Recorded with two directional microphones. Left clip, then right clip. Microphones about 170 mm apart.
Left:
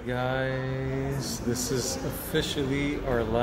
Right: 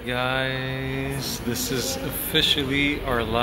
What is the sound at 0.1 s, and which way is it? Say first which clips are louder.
Speech: right 4 dB; 20° left (ahead or behind).